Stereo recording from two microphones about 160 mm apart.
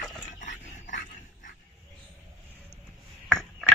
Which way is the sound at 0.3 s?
50° left (ahead or behind).